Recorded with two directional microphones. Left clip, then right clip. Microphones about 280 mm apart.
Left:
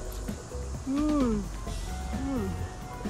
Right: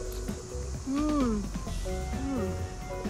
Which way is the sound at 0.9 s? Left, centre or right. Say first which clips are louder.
Left 1 dB; centre.